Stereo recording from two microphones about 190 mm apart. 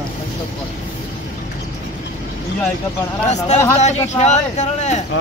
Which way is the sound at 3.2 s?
35° left (ahead or behind).